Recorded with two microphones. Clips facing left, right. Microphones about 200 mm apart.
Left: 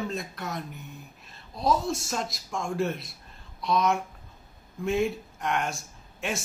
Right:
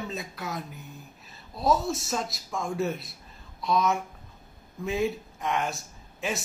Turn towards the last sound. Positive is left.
turn(degrees=0)  # may be behind; listen again after turning